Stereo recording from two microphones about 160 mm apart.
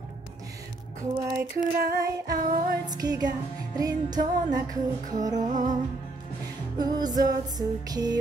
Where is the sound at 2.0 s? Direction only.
20° right (ahead or behind).